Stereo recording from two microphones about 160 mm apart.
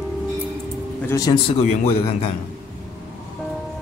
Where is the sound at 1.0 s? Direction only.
20° left (ahead or behind).